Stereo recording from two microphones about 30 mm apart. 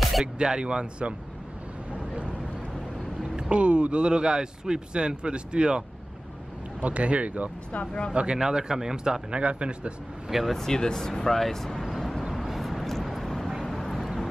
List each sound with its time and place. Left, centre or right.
0.4 s speech: right
3.2 s speech: right
6.8 s speech: right
7.8 s speech: left
8.1 s speech: right
8.4 s speech: right
9.3 s speech: right
10.4 s speech: centre
10.7 s speech: left
11.8 s vehicle: centre
12.4 s vehicle: centre